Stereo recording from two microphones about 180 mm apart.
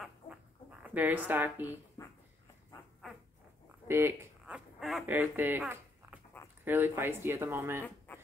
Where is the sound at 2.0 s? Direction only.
20° left (ahead or behind).